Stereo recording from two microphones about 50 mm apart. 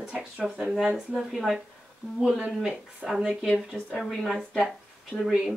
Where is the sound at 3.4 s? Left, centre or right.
Centre.